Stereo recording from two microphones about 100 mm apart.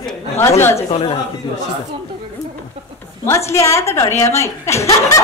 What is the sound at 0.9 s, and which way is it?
Speech, 80° left.